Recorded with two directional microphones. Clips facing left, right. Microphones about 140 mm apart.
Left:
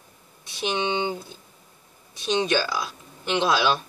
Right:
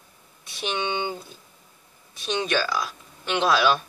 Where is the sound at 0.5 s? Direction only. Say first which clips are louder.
Left 2 dB; 25° left (ahead or behind).